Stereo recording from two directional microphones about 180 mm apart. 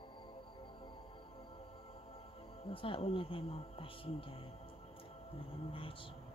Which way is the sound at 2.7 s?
30° left (ahead or behind).